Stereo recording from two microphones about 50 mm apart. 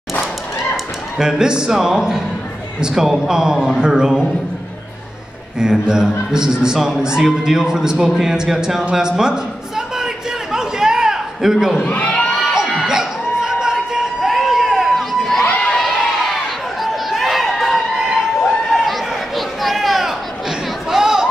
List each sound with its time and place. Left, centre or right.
1.1 s a man's voice: centre
5.6 s a man's voice: centre
8.9 s a sound: centre
11.8 s crowd: left
12.5 s a sound: centre
15.4 s crowd: centre
15.8 s crowd: centre